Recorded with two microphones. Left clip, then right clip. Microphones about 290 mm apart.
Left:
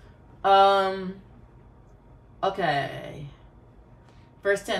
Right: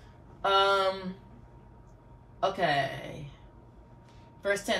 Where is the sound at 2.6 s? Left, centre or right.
Centre.